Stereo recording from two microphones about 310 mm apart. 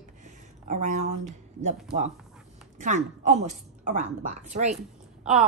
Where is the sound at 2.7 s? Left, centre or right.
Right.